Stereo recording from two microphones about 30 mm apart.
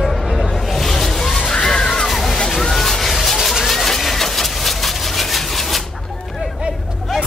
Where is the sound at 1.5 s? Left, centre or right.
Left.